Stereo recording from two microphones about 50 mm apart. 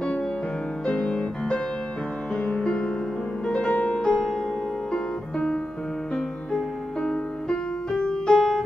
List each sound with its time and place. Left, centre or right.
0.8 s music: centre